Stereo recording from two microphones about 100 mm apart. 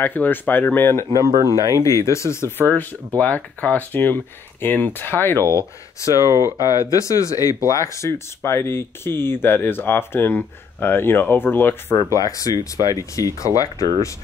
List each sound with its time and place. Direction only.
0.0 s speech: 20° left (ahead or behind)
3.2 s speech: 15° left (ahead or behind)
6.1 s speech: 30° right (ahead or behind)
6.7 s speech: 35° left (ahead or behind)
12.0 s speech: 35° left (ahead or behind)